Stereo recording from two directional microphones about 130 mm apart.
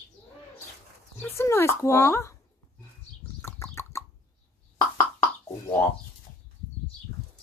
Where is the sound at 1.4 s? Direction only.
20° left (ahead or behind).